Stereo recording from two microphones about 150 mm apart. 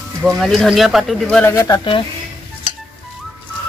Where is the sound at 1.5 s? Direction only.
25° left (ahead or behind).